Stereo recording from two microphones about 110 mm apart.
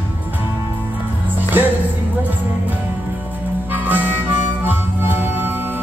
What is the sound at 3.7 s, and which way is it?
Harmonica, 15° right (ahead or behind).